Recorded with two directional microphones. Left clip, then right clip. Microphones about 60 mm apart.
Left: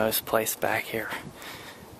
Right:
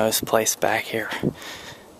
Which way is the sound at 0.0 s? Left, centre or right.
Right.